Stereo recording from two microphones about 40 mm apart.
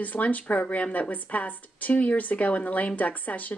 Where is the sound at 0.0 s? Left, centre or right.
Left.